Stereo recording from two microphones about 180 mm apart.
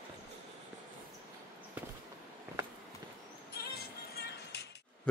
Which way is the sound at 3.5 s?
60° left (ahead or behind).